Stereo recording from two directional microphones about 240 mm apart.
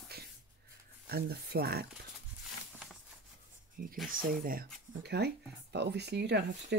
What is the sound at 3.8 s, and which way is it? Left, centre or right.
Speech, right.